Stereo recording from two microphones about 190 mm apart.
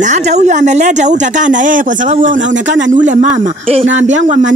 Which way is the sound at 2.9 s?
40° right (ahead or behind).